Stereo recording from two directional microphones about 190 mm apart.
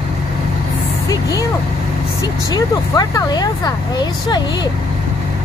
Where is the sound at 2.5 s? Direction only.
20° left (ahead or behind).